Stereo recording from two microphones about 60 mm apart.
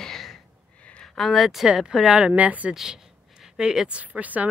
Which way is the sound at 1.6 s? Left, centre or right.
Centre.